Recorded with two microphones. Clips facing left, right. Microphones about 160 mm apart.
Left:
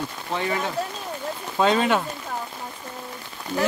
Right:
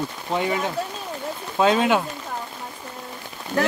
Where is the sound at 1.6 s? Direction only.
5° right (ahead or behind).